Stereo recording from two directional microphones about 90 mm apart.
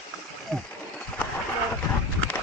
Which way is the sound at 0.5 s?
5° left (ahead or behind).